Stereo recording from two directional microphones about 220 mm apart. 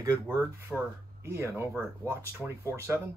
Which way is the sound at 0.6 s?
10° right (ahead or behind).